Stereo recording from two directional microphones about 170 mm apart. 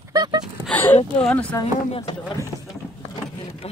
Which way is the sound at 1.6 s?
35° left (ahead or behind).